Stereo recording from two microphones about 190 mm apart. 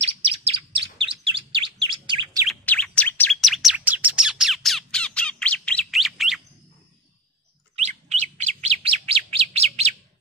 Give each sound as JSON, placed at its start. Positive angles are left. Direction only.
{"t": 0.0, "sound": "chirp", "side_deg": -30}
{"t": 2.4, "sound": "chirp", "side_deg": 5}
{"t": 3.3, "sound": "bird", "side_deg": 0}
{"t": 7.7, "sound": "bird", "side_deg": -35}